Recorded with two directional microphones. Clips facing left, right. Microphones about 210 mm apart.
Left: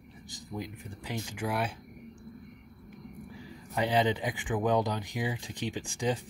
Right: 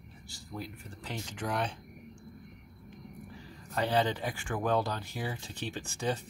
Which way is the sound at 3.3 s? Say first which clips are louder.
Left 2 dB; 15° left (ahead or behind).